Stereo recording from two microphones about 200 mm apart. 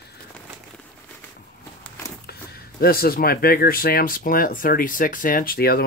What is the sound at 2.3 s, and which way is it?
Speech, 50° left (ahead or behind).